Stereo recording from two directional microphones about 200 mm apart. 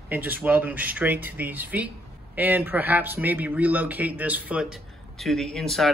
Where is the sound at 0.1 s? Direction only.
10° right (ahead or behind).